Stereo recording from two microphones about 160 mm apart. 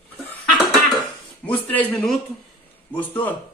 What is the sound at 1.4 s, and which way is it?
Speech, 10° left (ahead or behind).